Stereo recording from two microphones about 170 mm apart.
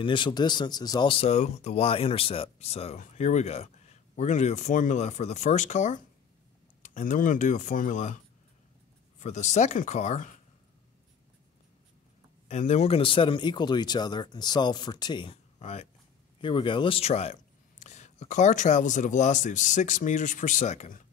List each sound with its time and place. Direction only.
0.0 s speech: 30° left (ahead or behind); by 8.2 s 50° left (ahead or behind)
9.2 s speech: 45° left (ahead or behind)
12.4 s speech: 40° left (ahead or behind); by 15.3 s 25° left (ahead or behind)
15.6 s speech: 40° left (ahead or behind)
16.3 s speech: 30° left (ahead or behind); by 21.1 s 45° left (ahead or behind)